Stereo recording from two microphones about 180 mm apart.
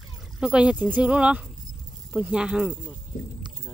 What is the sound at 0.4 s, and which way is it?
Speech, 5° right (ahead or behind).